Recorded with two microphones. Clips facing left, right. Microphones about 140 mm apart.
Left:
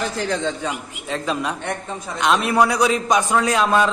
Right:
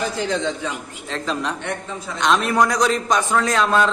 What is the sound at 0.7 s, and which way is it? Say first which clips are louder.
A man's voice: left 2 dB; 10° left (ahead or behind).